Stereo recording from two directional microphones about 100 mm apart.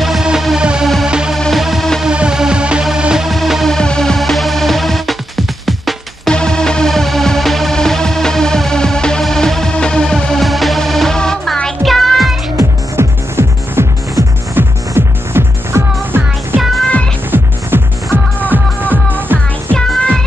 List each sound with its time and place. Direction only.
0.0 s music: 5° right (ahead or behind)
12.5 s music: 25° right (ahead or behind)
16.5 s music: 5° left (ahead or behind)
17.3 s music: 20° right (ahead or behind)
19.3 s music: 10° left (ahead or behind)